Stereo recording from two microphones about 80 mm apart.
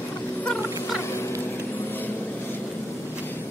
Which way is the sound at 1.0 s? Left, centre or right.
Left.